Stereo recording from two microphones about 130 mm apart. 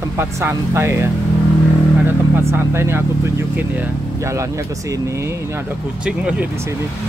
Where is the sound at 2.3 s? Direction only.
20° right (ahead or behind).